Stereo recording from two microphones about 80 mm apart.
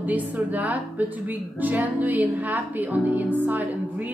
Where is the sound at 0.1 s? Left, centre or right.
Right.